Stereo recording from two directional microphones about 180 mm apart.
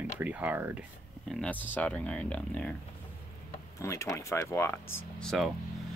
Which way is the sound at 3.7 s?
15° left (ahead or behind).